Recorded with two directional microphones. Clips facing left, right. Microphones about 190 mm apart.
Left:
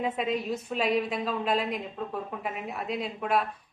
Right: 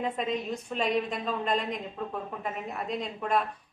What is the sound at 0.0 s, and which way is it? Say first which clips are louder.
A woman's voice: left 1 dB; 5° left (ahead or behind).